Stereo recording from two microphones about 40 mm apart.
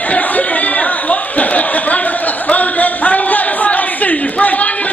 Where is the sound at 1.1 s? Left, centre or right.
Left.